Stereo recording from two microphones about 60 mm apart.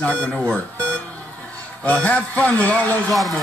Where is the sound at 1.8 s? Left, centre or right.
Left.